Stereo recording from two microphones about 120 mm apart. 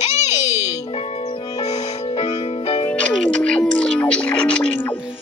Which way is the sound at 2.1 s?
50° left (ahead or behind).